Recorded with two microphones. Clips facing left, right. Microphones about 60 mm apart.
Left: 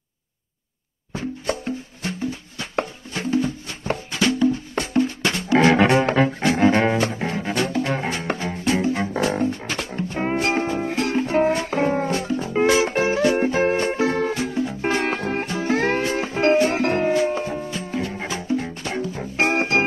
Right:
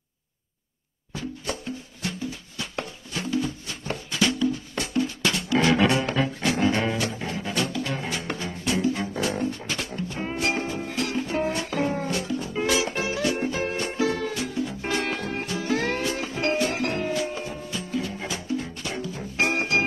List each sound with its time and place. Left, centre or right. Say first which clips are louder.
1.1 s music: left 6 dB; left